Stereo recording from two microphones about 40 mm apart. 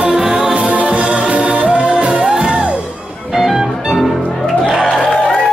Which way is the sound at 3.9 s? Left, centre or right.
Centre.